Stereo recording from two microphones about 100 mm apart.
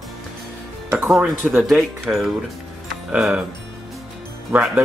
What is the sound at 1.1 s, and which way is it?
A man's voice, 5° right (ahead or behind).